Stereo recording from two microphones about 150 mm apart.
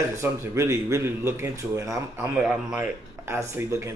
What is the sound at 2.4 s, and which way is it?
Speech, 5° right (ahead or behind).